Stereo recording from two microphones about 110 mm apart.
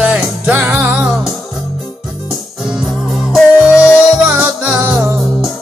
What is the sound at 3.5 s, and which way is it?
Music, 10° right (ahead or behind).